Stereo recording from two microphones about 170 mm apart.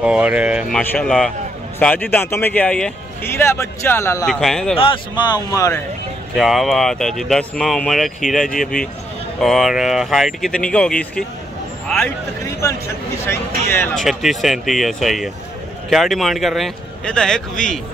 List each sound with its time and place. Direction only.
0.0 s speech: 5° right (ahead or behind)
0.7 s speech: 5° left (ahead or behind)
4.3 s speech: 5° left (ahead or behind)
4.7 s speech: 30° left (ahead or behind)
6.3 s speech: centre (ahead or behind)
12.4 s speech: 15° left (ahead or behind)
14.0 s speech: centre (ahead or behind)